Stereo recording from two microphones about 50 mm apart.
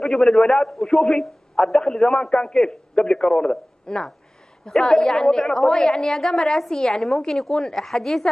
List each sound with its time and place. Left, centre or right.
0.0 s a woman's voice: centre